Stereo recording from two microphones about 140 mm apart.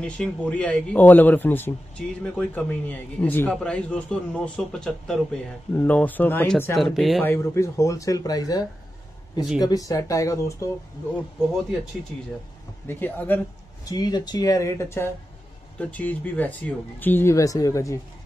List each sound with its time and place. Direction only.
0.0 s a man's voice: 10° left (ahead or behind)
7.2 s speech: 20° left (ahead or behind)
12.8 s a man's voice: 15° left (ahead or behind)
13.8 s a man's voice: 25° left (ahead or behind)